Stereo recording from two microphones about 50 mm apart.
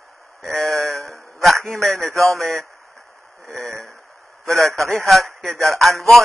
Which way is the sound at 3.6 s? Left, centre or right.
Right.